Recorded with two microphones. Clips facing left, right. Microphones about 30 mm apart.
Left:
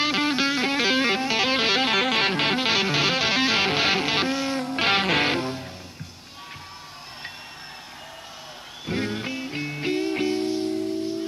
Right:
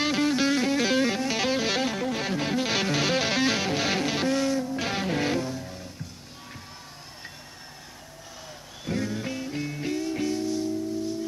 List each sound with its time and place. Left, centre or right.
0.0 s music: left
1.9 s music: left
2.2 s music: left
2.7 s music: left
3.5 s music: left
4.6 s music: left
5.2 s music: left
8.9 s music: left